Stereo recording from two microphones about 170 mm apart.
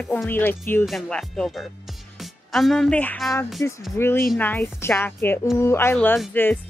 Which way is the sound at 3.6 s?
15° left (ahead or behind).